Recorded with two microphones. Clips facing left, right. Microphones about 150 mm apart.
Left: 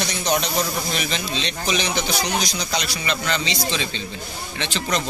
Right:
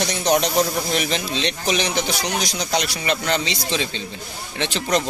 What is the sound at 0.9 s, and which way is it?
A man's voice, 65° right (ahead or behind).